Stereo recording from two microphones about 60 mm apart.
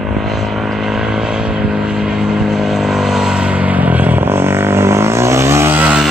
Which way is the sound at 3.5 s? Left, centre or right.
Right.